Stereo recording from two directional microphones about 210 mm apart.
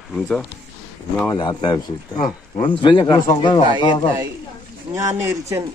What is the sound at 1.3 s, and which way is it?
Speech, 20° left (ahead or behind).